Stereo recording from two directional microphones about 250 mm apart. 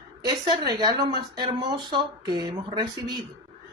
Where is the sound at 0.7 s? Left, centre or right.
Centre.